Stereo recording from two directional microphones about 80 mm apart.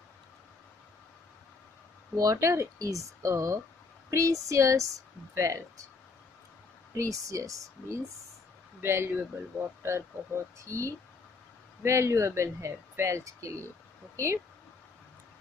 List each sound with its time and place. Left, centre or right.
2.1 s speech: right
7.0 s speech: right
8.8 s speech: right